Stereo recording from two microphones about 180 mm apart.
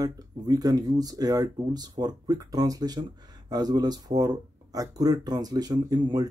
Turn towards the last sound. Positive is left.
turn(degrees=-25)  # may be behind; listen again after turning